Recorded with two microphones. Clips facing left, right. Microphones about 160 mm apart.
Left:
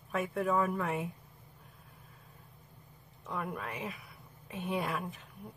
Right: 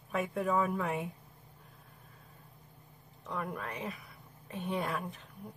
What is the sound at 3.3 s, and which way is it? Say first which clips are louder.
Speech: even; centre (ahead or behind).